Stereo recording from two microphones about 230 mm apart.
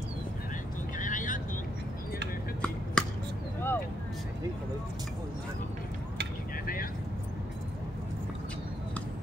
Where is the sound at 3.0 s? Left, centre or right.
Centre.